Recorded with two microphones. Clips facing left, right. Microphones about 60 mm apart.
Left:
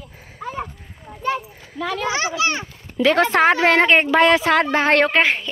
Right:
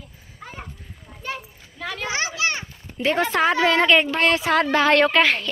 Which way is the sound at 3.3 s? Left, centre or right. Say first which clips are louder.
Left 4 dB; left.